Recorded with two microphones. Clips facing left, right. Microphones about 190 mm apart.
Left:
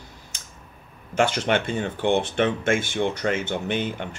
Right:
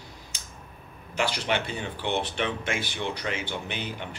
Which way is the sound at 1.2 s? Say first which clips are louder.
Left 6 dB; 50° left (ahead or behind).